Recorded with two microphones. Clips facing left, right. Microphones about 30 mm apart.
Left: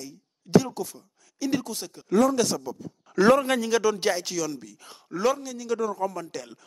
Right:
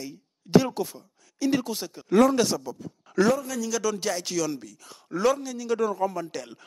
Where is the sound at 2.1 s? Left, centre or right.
Right.